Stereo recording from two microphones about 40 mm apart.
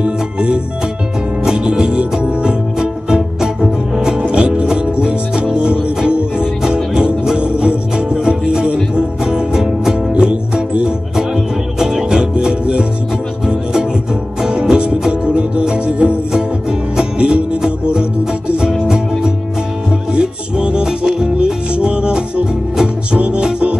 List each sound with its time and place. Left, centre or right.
0.0 s music: right
1.6 s music: right
10.1 s music: right
11.1 s music: centre
14.5 s music: right
17.2 s music: right
20.1 s music: centre
21.7 s music: right